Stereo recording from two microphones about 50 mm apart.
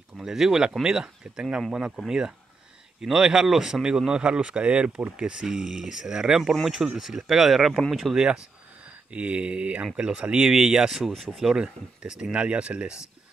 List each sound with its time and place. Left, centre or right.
0.2 s speech: centre
8.8 s speech: right